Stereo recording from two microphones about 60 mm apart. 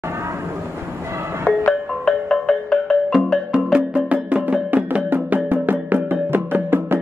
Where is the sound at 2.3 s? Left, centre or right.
Centre.